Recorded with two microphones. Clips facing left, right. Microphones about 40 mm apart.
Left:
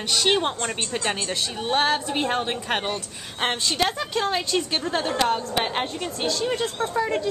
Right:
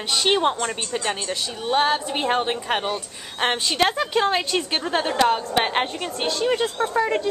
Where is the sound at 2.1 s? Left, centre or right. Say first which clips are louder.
Right 2 dB; centre.